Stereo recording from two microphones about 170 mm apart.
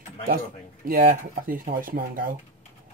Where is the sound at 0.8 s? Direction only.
55° right (ahead or behind).